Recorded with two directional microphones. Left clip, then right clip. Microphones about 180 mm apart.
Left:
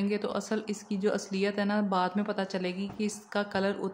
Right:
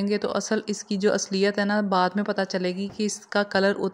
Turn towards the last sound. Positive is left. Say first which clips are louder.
# right 8 dB
turn(degrees=-35)  # may be behind; listen again after turning